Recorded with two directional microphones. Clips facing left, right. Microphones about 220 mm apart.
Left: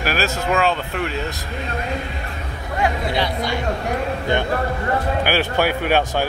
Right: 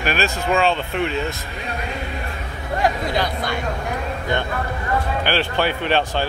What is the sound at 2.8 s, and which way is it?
Speech, 45° right (ahead or behind).